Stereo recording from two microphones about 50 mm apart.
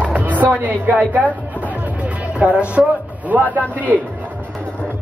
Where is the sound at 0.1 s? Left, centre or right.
Right.